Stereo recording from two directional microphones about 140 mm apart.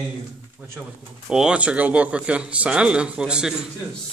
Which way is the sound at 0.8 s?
5° right (ahead or behind).